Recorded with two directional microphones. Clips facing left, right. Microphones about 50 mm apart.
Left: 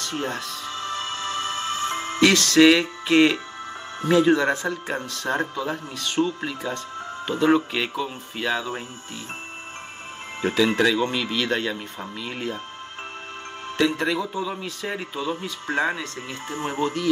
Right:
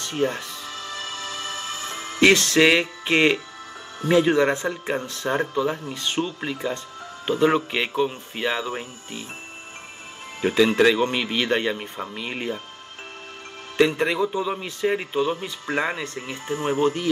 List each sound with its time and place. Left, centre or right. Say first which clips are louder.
0.0 s speech: right 3 dB; right
0.7 s music: left 5 dB; left
2.1 s speech: even; right
10.4 s speech: right 3 dB; right
13.7 s speech: right 3 dB; right
16.8 s speech: right 1 dB; right